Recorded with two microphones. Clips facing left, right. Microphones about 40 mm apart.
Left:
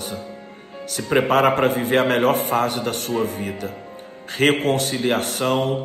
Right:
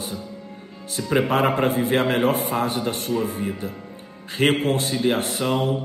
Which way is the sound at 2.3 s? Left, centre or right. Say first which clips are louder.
Left 3 dB; left.